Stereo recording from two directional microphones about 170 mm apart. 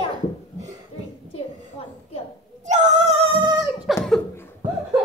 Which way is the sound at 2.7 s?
45° right (ahead or behind).